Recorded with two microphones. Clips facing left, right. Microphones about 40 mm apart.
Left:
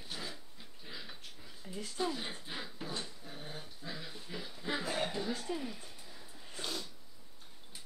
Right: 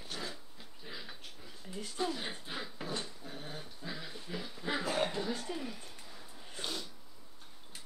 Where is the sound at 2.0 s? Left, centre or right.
Centre.